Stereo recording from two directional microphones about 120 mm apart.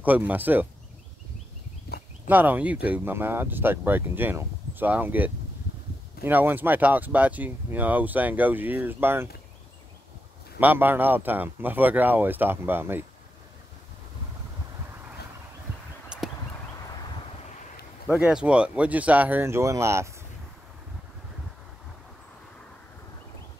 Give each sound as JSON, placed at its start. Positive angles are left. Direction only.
{"t": 0.0, "sound": "speech", "side_deg": -15}
{"t": 2.2, "sound": "speech", "side_deg": -15}
{"t": 10.6, "sound": "speech", "side_deg": -15}
{"t": 18.0, "sound": "speech", "side_deg": -5}